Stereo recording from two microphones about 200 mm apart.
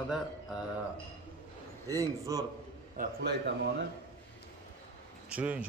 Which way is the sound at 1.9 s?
15° right (ahead or behind).